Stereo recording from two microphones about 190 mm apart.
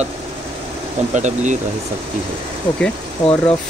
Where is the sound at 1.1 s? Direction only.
40° right (ahead or behind).